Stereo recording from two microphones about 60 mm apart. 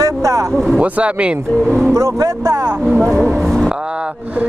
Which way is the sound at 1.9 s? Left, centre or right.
Right.